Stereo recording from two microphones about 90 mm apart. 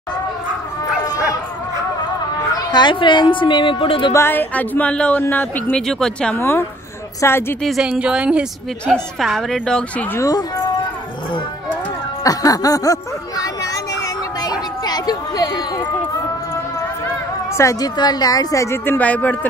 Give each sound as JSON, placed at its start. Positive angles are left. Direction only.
{"t": 2.5, "sound": "a woman's voice", "side_deg": 50}
{"t": 4.1, "sound": "speech", "side_deg": 25}
{"t": 5.8, "sound": "a woman's voice", "side_deg": 5}
{"t": 6.3, "sound": "speech", "side_deg": 25}
{"t": 7.6, "sound": "a woman's voice", "side_deg": -5}
{"t": 8.8, "sound": "a woman's voice", "side_deg": 5}
{"t": 12.2, "sound": "speech", "side_deg": 40}
{"t": 14.4, "sound": "a sound", "side_deg": 45}
{"t": 17.6, "sound": "speech", "side_deg": 40}
{"t": 18.9, "sound": "a woman's voice", "side_deg": 15}